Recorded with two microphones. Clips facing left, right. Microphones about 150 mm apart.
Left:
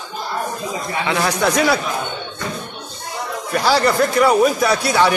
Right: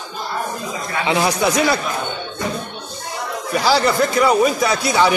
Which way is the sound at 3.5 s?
Centre (ahead or behind).